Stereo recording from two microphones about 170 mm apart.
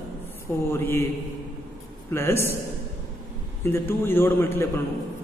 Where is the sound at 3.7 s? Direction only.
15° left (ahead or behind).